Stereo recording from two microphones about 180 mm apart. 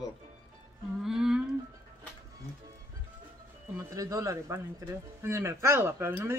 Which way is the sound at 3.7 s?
15° right (ahead or behind).